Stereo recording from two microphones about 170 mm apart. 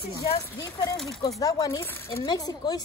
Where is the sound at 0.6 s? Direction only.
20° left (ahead or behind).